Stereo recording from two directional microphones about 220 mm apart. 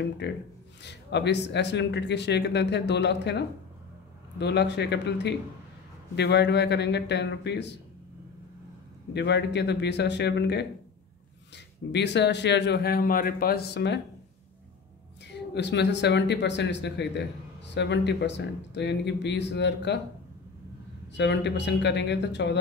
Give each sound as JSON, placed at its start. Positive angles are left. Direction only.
{"t": 0.2, "sound": "speech", "side_deg": 50}
{"t": 9.1, "sound": "speech", "side_deg": 50}
{"t": 15.5, "sound": "speech", "side_deg": 50}
{"t": 21.1, "sound": "speech", "side_deg": 50}